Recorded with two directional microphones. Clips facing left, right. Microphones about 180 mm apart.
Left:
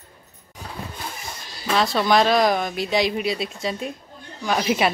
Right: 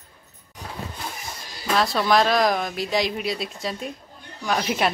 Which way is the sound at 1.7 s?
Centre (ahead or behind).